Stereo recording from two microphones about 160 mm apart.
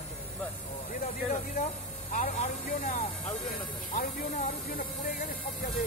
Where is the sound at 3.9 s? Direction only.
55° left (ahead or behind).